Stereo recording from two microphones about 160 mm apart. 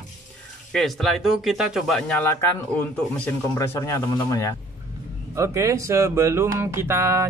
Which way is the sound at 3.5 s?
15° left (ahead or behind).